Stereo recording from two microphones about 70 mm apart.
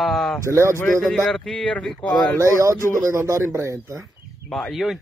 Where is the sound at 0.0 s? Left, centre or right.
Centre.